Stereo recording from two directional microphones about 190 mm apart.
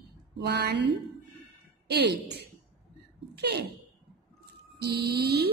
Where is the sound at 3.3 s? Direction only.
60° right (ahead or behind).